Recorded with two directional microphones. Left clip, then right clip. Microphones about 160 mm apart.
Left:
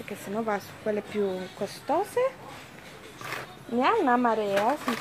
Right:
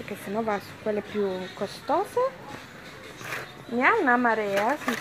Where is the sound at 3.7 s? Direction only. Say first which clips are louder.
Right 2 dB; 5° left (ahead or behind).